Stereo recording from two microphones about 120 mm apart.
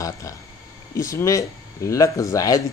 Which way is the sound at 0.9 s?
25° left (ahead or behind).